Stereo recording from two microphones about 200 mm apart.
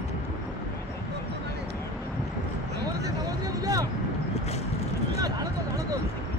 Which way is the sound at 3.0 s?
20° right (ahead or behind).